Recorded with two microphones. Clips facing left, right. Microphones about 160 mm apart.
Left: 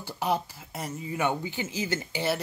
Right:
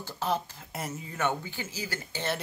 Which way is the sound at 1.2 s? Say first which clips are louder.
Left 2 dB; 15° left (ahead or behind).